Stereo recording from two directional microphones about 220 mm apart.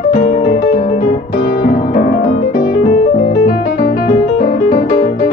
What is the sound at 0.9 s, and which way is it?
Music, 45° left (ahead or behind).